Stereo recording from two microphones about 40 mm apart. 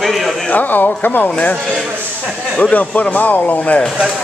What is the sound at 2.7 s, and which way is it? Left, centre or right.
Speech, left.